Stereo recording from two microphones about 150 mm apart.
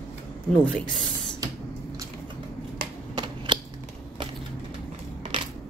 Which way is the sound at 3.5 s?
30° right (ahead or behind).